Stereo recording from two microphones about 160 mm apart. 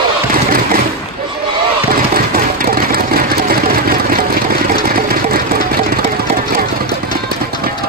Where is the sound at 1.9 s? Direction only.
65° right (ahead or behind).